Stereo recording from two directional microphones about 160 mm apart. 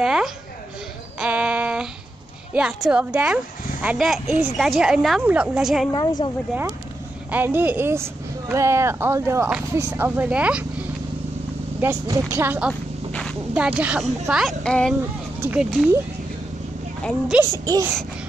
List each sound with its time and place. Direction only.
0.0 s speech: 5° right (ahead or behind)
1.2 s a sound: 10° right (ahead or behind)
2.5 s speech: 5° right (ahead or behind)
5.9 s a woman's voice: 25° left (ahead or behind)
7.2 s speech: 10° right (ahead or behind)
13.1 s a sound: 5° left (ahead or behind)
13.6 s speech: 10° right (ahead or behind)
15.4 s speech: 5° right (ahead or behind)
17.3 s speech: 5° right (ahead or behind)